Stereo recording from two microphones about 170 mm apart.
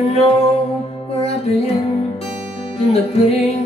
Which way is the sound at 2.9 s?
35° left (ahead or behind).